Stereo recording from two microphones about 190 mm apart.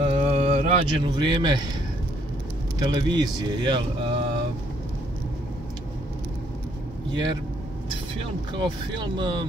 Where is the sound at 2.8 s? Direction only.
25° right (ahead or behind).